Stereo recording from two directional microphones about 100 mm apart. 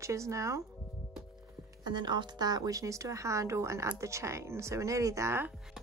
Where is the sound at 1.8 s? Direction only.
50° right (ahead or behind); by 5.5 s 25° right (ahead or behind).